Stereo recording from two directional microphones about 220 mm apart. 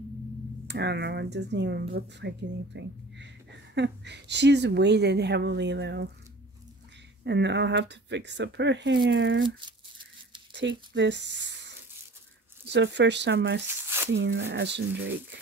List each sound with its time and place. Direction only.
0.7 s speech: 50° right (ahead or behind)
7.2 s speech: 50° right (ahead or behind)
13.8 s squish: 10° right (ahead or behind)
14.1 s speech: 55° right (ahead or behind)